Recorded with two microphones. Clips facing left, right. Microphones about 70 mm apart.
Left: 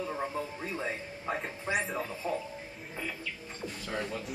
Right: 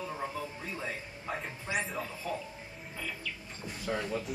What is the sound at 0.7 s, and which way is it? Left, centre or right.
Speech, centre.